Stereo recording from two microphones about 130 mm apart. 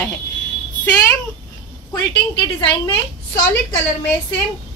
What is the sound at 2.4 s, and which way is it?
Speech, 40° left (ahead or behind).